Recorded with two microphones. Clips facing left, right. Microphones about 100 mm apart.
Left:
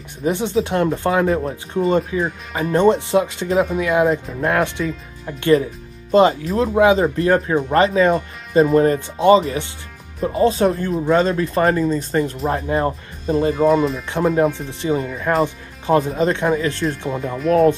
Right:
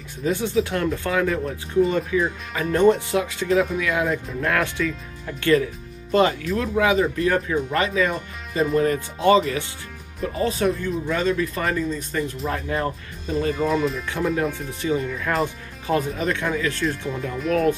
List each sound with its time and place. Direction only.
0.2 s speech: 20° left (ahead or behind)
13.6 s speech: 5° left (ahead or behind)
14.0 s speech: 30° left (ahead or behind)